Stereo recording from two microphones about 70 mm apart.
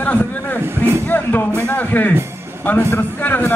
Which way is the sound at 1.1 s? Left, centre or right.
Left.